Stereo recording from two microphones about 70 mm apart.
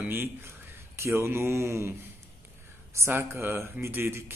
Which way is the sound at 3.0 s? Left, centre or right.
Right.